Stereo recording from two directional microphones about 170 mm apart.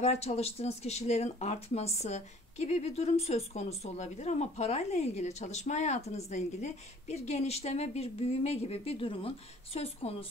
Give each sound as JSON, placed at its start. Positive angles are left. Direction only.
{"t": 0.0, "sound": "speech", "side_deg": 40}